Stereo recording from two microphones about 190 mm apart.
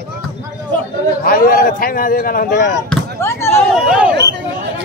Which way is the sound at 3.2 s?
15° left (ahead or behind).